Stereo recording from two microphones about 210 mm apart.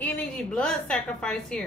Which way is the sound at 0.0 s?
5° left (ahead or behind).